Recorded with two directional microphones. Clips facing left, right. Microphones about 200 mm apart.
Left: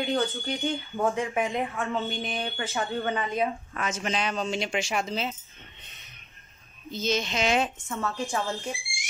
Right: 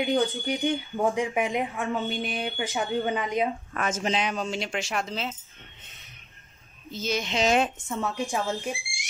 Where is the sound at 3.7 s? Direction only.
50° right (ahead or behind).